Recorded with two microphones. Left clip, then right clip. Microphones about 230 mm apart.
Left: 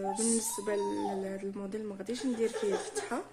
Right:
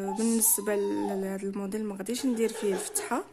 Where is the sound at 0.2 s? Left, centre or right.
Right.